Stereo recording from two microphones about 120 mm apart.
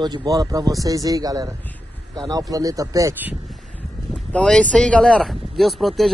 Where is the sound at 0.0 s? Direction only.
35° right (ahead or behind).